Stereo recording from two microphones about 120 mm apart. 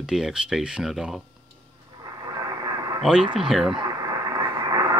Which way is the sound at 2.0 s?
30° right (ahead or behind).